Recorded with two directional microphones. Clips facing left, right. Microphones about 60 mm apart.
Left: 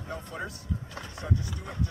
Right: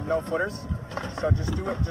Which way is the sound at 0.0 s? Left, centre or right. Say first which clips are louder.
Right 11 dB; right.